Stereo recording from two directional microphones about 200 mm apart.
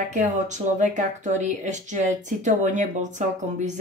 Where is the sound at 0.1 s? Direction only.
40° right (ahead or behind).